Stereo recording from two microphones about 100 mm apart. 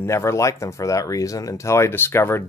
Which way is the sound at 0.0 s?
30° left (ahead or behind).